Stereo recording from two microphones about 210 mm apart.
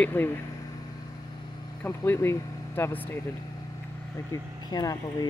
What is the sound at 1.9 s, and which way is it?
Speech, 10° left (ahead or behind).